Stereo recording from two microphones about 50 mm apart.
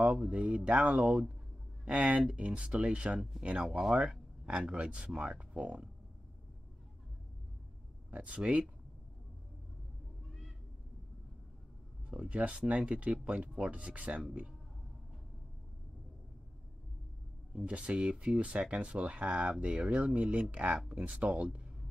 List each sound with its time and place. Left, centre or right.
0.0 s a sound: centre
0.3 s speech: right
3.6 s speech: centre
4.5 s speech: centre
8.1 s speech: right
12.2 s speech: right
17.6 s speech: right